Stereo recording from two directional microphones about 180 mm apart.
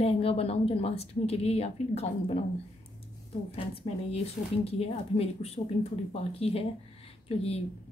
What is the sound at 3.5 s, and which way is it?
A woman's voice, 30° left (ahead or behind).